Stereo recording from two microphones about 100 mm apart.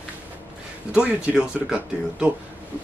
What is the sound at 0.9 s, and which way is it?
Speech, 10° right (ahead or behind).